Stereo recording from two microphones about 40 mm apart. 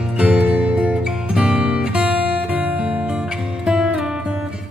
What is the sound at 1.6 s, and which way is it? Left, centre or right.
Music, right.